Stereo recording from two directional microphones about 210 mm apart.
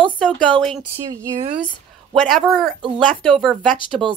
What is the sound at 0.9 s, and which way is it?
Speech, 15° right (ahead or behind).